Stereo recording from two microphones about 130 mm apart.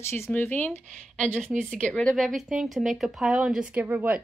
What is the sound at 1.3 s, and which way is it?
Speech, 15° right (ahead or behind).